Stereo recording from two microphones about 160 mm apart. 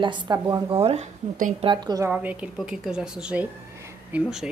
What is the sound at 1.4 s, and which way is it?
Speech, 55° right (ahead or behind).